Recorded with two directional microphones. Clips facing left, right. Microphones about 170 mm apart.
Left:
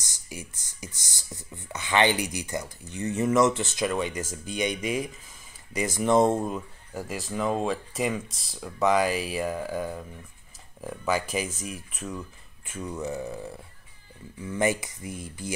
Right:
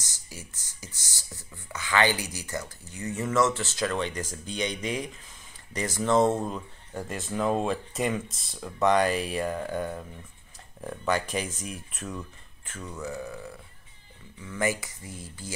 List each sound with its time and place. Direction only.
0.3 s speech: 15° left (ahead or behind)
12.6 s speech: 15° left (ahead or behind)